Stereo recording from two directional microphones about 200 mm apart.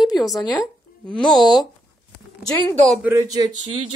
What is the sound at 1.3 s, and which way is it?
Speech, centre (ahead or behind).